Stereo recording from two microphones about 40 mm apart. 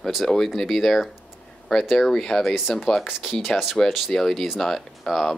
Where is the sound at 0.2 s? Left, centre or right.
Centre.